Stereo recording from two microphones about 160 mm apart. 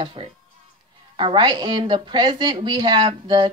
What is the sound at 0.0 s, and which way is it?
Speech, 30° right (ahead or behind).